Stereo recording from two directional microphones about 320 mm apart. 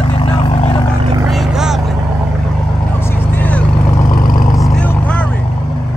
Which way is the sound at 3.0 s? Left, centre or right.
Centre.